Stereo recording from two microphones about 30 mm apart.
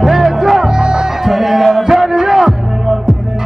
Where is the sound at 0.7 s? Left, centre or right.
Right.